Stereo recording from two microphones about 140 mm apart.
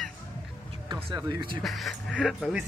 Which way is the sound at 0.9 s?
35° right (ahead or behind).